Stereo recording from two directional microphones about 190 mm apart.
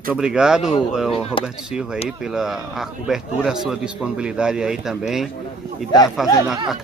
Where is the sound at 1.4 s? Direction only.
5° right (ahead or behind).